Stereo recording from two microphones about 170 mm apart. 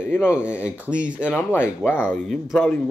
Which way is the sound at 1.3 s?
10° left (ahead or behind).